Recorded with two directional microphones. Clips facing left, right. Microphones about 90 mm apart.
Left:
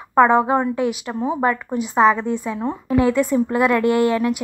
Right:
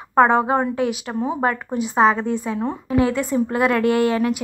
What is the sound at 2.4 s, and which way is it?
A woman's voice, 5° right (ahead or behind).